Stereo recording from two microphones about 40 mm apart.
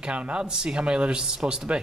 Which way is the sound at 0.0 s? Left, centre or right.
Right.